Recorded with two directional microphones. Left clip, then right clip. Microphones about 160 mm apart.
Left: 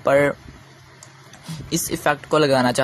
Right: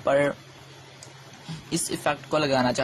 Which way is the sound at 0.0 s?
20° left (ahead or behind).